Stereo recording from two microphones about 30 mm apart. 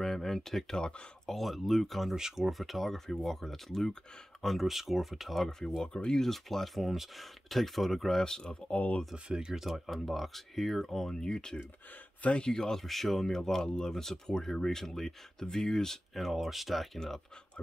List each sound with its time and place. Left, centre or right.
0.0 s a sound: centre
0.7 s speech: left
1.3 s speech: centre
4.6 s speech: centre
6.1 s speech: centre
8.2 s speech: left
8.7 s speech: left
9.1 s speech: right
9.7 s speech: centre
11.1 s speech: centre
12.2 s speech: left
12.5 s speech: left
12.8 s speech: centre
16.2 s speech: centre